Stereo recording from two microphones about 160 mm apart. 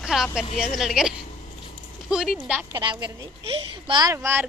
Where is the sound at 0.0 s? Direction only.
5° right (ahead or behind).